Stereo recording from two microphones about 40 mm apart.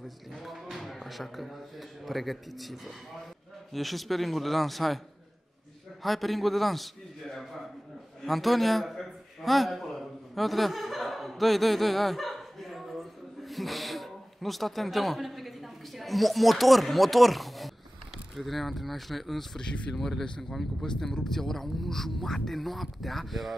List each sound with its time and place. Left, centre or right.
0.4 s a man's voice: centre
6.0 s a man's voice: centre
8.3 s a sound: centre
18.3 s speech: centre